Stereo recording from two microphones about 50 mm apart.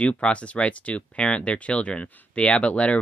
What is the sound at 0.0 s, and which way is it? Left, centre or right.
Speech, left.